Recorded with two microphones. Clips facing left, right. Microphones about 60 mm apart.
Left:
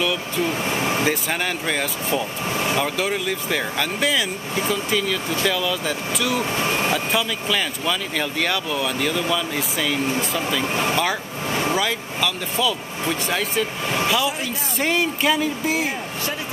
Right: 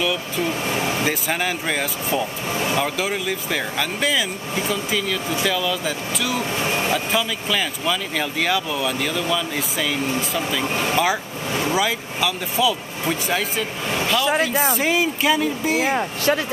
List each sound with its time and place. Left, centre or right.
1.0 s speech: centre
14.3 s speech: right
14.8 s speech: centre
15.8 s speech: right